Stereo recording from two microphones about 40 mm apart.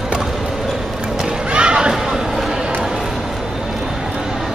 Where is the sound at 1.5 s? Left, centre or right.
Right.